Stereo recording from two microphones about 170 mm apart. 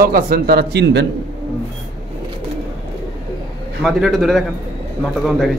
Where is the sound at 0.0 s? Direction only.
60° right (ahead or behind).